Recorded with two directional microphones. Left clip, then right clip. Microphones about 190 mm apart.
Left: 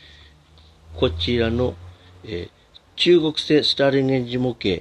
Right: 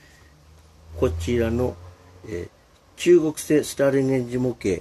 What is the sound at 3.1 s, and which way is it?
Speech, 25° left (ahead or behind).